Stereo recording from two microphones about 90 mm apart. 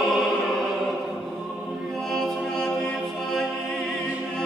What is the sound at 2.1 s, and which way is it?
Music, 5° left (ahead or behind).